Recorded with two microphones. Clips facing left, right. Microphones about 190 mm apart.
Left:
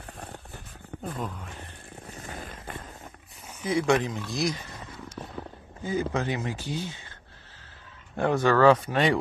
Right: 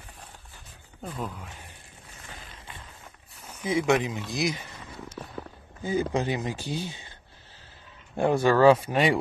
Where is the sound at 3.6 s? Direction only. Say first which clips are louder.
Even; 25° right (ahead or behind).